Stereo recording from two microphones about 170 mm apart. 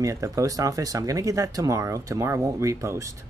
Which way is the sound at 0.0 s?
20° right (ahead or behind).